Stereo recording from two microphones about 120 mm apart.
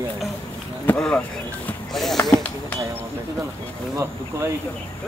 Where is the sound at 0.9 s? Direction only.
10° left (ahead or behind).